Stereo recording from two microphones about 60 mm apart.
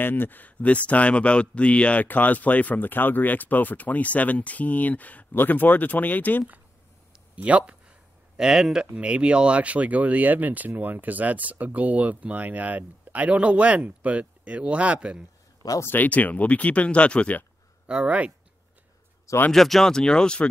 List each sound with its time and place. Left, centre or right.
0.0 s speech: left
7.3 s speech: right
8.4 s speech: centre
8.9 s speech: centre
15.9 s speech: left
17.8 s speech: centre
19.5 s speech: centre